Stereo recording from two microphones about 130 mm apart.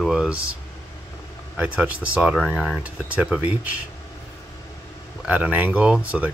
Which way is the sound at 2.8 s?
10° right (ahead or behind).